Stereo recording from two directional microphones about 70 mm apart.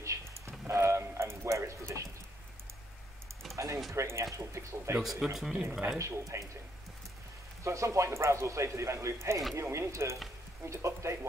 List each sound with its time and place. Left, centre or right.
0.0 s a sound: right
3.5 s a sound: right
3.9 s speech: right
5.2 s speech: centre
5.9 s speech: right
7.6 s speech: right